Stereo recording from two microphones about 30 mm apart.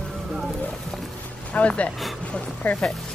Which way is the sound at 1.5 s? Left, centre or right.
Left.